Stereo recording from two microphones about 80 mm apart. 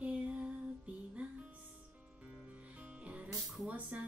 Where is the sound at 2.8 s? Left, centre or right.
Centre.